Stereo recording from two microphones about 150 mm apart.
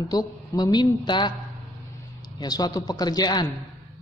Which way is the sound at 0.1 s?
25° left (ahead or behind).